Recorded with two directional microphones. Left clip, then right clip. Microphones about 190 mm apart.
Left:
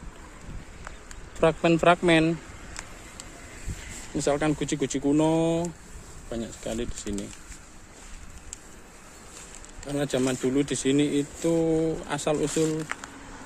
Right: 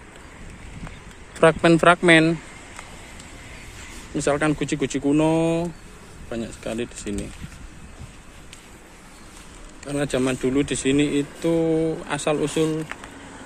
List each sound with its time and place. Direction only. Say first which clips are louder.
1.4 s speech: right 6 dB; centre (ahead or behind)
4.2 s speech: right 4 dB; 15° left (ahead or behind)
9.8 s speech: right 3 dB; 20° left (ahead or behind)